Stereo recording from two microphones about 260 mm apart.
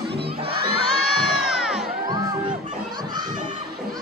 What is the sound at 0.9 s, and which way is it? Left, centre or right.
Crowd, centre.